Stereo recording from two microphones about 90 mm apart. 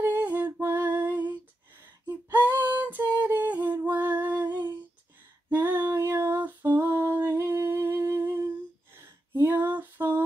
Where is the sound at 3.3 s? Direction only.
20° right (ahead or behind).